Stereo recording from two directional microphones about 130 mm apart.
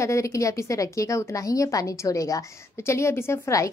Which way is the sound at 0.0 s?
25° left (ahead or behind).